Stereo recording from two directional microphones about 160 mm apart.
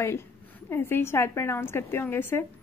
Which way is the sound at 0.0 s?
15° left (ahead or behind).